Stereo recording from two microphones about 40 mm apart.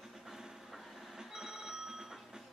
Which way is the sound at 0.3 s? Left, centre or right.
Centre.